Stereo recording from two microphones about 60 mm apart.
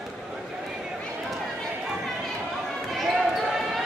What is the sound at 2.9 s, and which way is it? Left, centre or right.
Basketball bounce, centre.